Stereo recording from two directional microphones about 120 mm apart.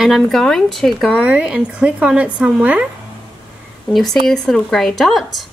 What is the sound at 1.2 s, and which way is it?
A woman's voice, 10° right (ahead or behind).